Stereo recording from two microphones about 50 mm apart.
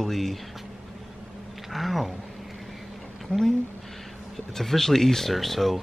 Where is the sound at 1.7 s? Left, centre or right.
Centre.